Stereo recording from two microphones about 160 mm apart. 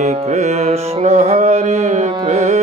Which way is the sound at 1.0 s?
45° right (ahead or behind).